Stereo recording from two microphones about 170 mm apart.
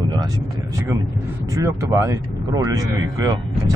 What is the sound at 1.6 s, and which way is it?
Speech, 15° right (ahead or behind).